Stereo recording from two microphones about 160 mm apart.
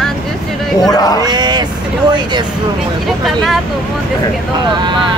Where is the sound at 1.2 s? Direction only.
25° right (ahead or behind).